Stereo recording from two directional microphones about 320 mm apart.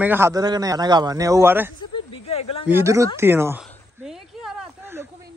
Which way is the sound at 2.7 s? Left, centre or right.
Centre.